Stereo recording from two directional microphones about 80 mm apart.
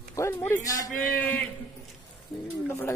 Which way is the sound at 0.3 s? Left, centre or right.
Left.